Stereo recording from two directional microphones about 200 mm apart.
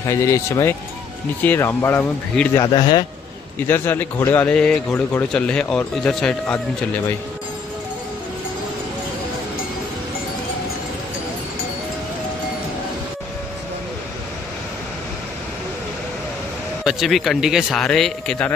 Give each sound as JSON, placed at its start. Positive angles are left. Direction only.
{"t": 0.1, "sound": "speech", "side_deg": 15}
{"t": 2.6, "sound": "a man's voice", "side_deg": 25}
{"t": 3.6, "sound": "a man's voice", "side_deg": 10}
{"t": 16.8, "sound": "a man's voice", "side_deg": 0}